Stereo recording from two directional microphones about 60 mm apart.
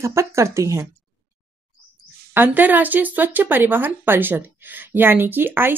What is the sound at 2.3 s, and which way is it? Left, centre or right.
Speech, right.